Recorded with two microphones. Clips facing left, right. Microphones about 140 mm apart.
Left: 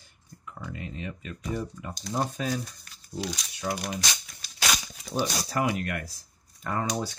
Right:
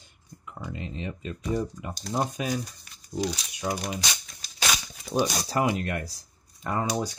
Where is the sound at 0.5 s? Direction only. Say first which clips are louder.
Right 2 dB; 20° right (ahead or behind).